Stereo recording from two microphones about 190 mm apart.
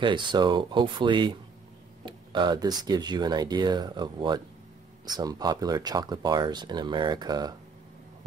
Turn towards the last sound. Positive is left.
turn(degrees=-20)  # may be behind; listen again after turning